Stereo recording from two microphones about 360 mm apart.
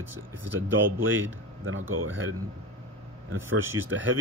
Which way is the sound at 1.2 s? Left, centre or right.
Right.